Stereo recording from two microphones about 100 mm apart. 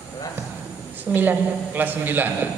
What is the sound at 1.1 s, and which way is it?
A man's voice, 20° right (ahead or behind).